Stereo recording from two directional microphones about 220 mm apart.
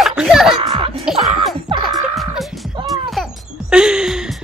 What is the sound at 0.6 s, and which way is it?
Music, 25° right (ahead or behind).